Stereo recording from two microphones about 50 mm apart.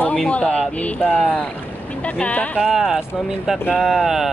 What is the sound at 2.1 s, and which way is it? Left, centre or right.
Speech, left.